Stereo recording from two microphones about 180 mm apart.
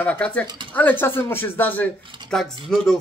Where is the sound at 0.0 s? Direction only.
10° left (ahead or behind).